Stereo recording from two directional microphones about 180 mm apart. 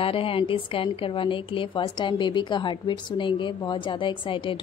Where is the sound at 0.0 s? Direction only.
30° left (ahead or behind).